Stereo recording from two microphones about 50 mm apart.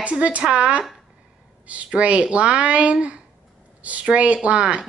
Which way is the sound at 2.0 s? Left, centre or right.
Right.